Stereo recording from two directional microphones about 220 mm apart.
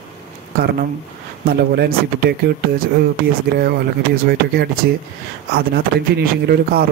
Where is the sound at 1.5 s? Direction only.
45° right (ahead or behind).